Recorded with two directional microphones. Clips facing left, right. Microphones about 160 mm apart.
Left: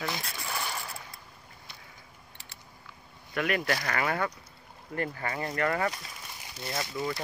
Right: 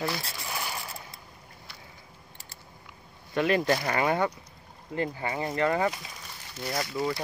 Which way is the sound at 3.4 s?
25° right (ahead or behind).